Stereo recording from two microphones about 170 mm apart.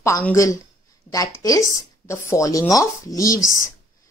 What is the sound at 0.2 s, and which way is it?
A woman's voice, 15° left (ahead or behind).